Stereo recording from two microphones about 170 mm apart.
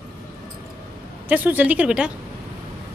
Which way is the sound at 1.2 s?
10° right (ahead or behind).